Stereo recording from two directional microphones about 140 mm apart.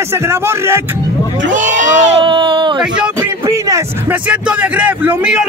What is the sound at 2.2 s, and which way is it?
Speech, 35° right (ahead or behind).